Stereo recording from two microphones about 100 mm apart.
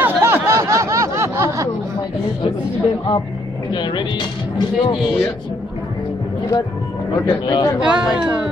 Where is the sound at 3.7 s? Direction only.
50° left (ahead or behind).